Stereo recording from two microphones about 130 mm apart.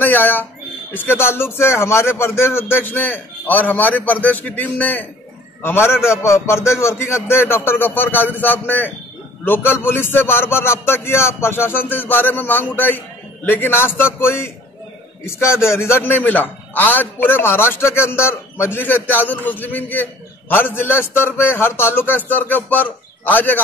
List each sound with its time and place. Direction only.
0.0 s a man's voice: 15° left (ahead or behind)